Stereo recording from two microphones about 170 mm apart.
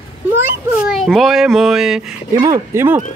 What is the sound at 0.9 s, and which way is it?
Speech, centre (ahead or behind).